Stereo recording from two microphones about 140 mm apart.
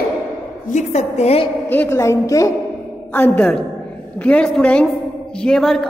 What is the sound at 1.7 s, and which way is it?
A woman's voice, 15° left (ahead or behind).